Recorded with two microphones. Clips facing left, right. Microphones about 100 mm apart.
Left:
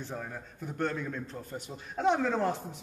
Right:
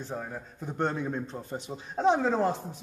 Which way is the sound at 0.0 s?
15° right (ahead or behind).